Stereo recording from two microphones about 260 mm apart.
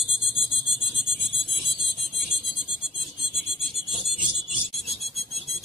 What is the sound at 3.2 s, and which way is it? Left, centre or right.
Filing, centre.